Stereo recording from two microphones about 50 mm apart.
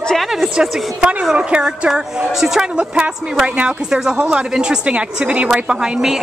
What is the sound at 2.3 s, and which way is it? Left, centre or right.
Speech, centre.